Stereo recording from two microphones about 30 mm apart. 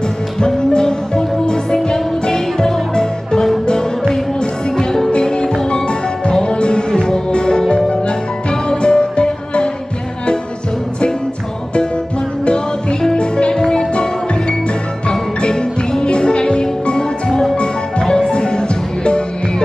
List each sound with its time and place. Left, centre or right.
0.6 s music: left
5.2 s music: left
13.1 s music: left
15.9 s music: left
18.0 s music: left